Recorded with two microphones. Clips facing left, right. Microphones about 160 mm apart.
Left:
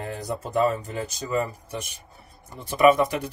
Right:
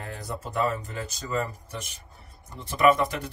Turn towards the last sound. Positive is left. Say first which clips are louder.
# left 3 dB
turn(degrees=15)  # may be behind; listen again after turning